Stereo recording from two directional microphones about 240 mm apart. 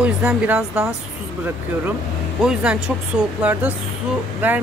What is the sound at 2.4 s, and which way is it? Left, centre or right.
Speech, centre.